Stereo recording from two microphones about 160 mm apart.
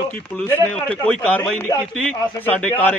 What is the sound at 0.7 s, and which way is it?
A man's voice, 5° left (ahead or behind).